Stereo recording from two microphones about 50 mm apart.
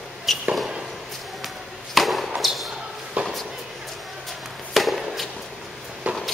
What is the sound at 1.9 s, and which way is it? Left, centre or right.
Chop, centre.